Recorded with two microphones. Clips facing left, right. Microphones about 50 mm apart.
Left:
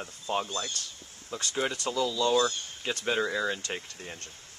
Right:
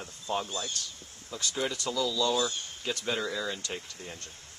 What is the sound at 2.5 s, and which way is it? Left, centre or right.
Speech, centre.